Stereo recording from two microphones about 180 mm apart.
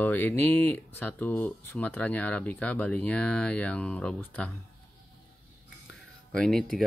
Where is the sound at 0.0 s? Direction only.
10° left (ahead or behind).